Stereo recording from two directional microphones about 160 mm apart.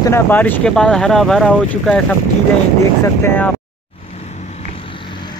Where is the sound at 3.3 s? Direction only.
10° left (ahead or behind).